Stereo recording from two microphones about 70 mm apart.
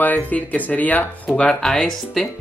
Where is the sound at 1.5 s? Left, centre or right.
Centre.